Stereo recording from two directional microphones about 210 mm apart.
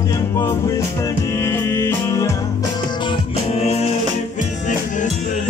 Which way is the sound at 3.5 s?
30° left (ahead or behind).